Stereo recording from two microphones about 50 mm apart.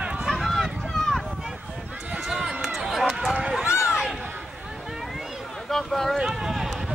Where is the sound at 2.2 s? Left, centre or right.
Centre.